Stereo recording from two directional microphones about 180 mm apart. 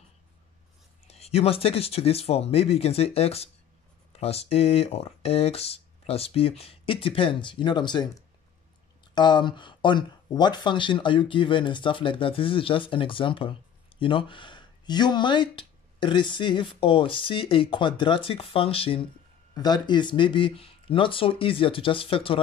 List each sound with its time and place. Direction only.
1.0 s speech: 35° left (ahead or behind)